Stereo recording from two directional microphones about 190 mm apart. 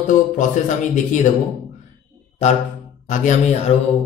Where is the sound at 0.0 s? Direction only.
40° left (ahead or behind).